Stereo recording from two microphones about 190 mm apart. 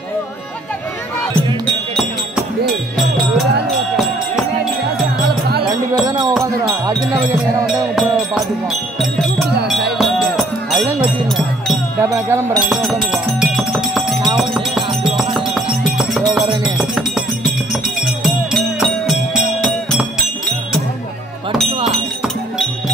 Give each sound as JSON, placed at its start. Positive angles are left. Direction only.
{"t": 6.0, "sound": "a sound", "side_deg": -20}
{"t": 6.4, "sound": "music", "side_deg": -20}
{"t": 7.9, "sound": "music", "side_deg": 0}
{"t": 9.9, "sound": "music", "side_deg": 0}
{"t": 12.0, "sound": "music", "side_deg": -10}
{"t": 21.8, "sound": "music", "side_deg": -5}